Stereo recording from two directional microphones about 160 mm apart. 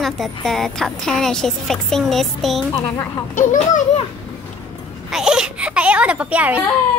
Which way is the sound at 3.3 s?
50° left (ahead or behind).